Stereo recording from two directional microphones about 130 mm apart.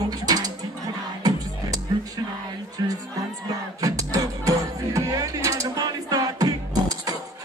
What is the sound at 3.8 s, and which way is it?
Music, 25° right (ahead or behind).